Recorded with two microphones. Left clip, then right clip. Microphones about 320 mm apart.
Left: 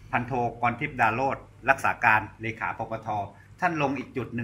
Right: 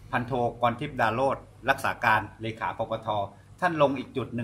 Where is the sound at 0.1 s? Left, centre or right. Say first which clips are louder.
Even; centre.